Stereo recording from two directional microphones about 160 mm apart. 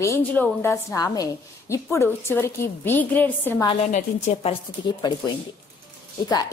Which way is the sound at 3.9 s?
45° left (ahead or behind).